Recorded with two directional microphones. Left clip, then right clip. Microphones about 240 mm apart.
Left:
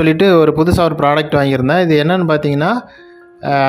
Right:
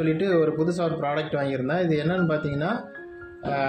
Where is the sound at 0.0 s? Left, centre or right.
Left.